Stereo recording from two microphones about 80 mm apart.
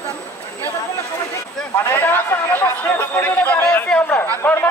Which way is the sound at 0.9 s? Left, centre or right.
Left.